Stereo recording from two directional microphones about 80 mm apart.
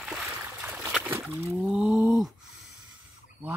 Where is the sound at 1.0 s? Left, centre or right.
Right.